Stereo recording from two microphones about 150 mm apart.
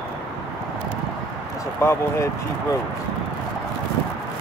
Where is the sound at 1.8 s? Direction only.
20° left (ahead or behind).